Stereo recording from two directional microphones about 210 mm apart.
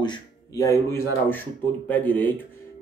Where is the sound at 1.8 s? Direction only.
10° left (ahead or behind).